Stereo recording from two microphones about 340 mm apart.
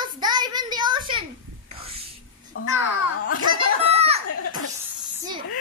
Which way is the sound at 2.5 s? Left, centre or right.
Left.